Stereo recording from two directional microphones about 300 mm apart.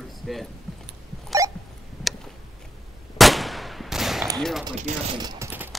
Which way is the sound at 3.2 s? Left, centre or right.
Centre.